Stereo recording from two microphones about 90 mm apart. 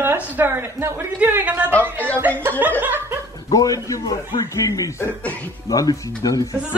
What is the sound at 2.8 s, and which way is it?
Speech, 20° right (ahead or behind).